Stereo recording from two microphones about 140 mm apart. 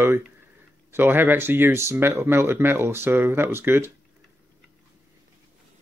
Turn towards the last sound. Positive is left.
turn(degrees=-15)  # may be behind; listen again after turning